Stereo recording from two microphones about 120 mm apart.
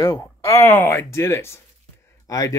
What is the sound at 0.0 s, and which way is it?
Speech, 20° left (ahead or behind).